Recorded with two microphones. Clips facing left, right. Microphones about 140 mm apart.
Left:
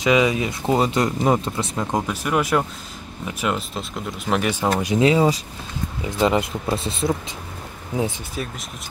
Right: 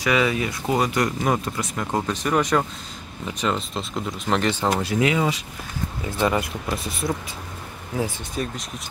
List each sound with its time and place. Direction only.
0.0 s speech: 20° left (ahead or behind)
2.2 s speech: 5° left (ahead or behind)
5.0 s speech: 30° left (ahead or behind)
6.0 s speech: 20° left (ahead or behind)
8.4 s speech: centre (ahead or behind)